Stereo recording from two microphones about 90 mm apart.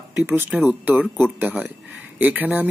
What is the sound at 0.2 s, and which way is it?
Speech, 25° right (ahead or behind).